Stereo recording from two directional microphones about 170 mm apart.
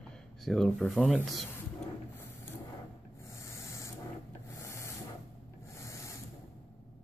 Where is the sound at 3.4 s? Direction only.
15° left (ahead or behind).